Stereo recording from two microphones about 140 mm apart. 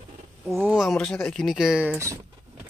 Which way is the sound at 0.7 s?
Centre (ahead or behind).